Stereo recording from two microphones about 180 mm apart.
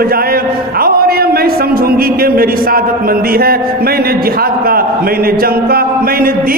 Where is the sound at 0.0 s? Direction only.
55° right (ahead or behind).